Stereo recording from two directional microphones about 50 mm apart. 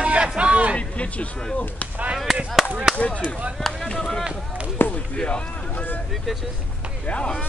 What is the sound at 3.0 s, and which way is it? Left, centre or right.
Speech, centre.